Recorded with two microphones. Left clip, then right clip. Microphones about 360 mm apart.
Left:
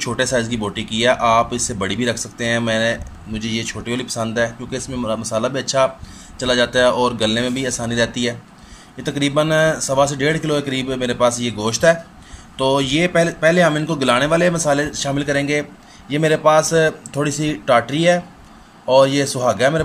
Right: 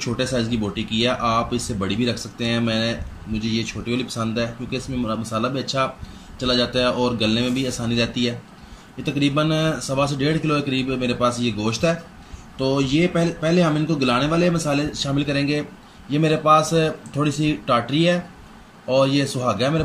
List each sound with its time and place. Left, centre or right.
0.0 s speech: centre